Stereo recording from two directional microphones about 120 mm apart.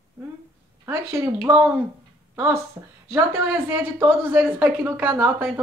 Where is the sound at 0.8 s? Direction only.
20° right (ahead or behind).